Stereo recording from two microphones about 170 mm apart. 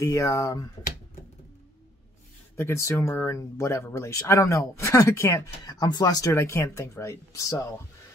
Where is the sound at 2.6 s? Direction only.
15° left (ahead or behind).